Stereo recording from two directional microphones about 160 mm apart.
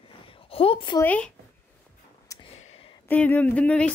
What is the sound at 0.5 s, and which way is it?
Speech, 35° left (ahead or behind).